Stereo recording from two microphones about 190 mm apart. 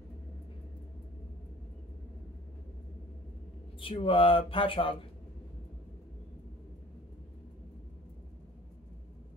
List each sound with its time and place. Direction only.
3.8 s speech: 30° left (ahead or behind)